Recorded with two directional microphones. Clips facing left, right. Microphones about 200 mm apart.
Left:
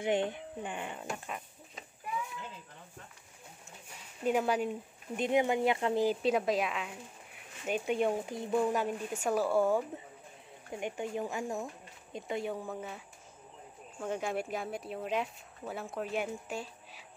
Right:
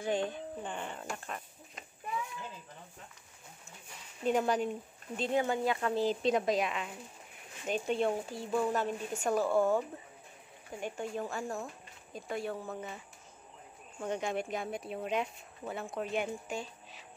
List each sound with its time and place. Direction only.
0.0 s speech: 20° left (ahead or behind)
4.2 s speech: 5° left (ahead or behind)
5.1 s speech: 15° left (ahead or behind)
6.0 s speech: 5° left (ahead or behind)